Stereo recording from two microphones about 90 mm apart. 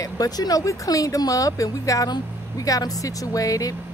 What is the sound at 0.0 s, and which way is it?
Speech, 45° left (ahead or behind).